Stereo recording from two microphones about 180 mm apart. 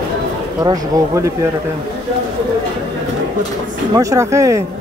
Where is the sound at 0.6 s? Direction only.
20° right (ahead or behind).